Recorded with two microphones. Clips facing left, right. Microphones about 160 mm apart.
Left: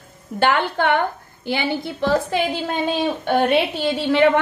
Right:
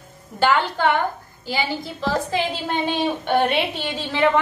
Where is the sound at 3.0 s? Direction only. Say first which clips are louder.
Left 1 dB; 5° left (ahead or behind).